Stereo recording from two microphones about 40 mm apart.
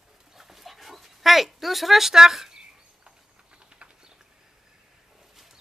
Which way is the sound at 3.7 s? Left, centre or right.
Right.